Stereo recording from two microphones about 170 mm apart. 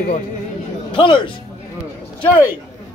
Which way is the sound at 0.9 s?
30° left (ahead or behind).